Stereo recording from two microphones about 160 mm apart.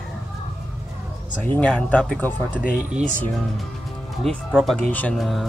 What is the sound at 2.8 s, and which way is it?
Speech, 55° right (ahead or behind).